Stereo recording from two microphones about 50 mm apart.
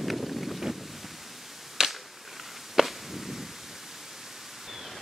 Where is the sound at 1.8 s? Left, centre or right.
Centre.